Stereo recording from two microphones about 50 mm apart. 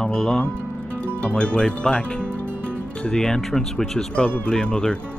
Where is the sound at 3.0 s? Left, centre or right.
Centre.